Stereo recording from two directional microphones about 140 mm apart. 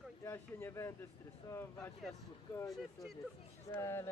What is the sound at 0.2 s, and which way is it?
Speech, 15° left (ahead or behind).